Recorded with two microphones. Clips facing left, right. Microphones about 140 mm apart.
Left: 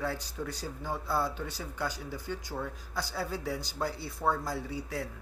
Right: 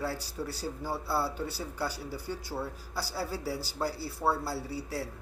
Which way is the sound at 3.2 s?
35° right (ahead or behind).